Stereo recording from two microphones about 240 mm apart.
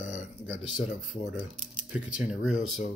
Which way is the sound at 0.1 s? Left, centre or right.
Left.